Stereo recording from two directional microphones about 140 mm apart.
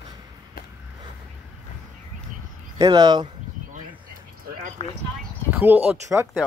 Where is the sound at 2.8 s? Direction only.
25° right (ahead or behind).